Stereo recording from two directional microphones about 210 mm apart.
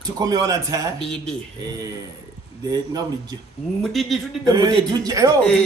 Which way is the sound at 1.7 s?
15° right (ahead or behind).